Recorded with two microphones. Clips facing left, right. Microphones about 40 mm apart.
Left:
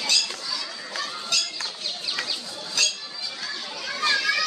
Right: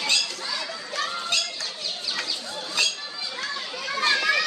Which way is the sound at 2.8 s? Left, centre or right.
Right.